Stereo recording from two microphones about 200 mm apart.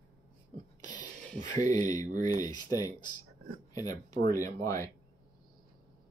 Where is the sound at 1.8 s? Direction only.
40° right (ahead or behind).